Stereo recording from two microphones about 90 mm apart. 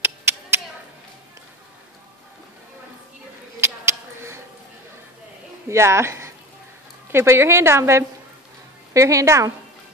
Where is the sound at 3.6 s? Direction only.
30° right (ahead or behind).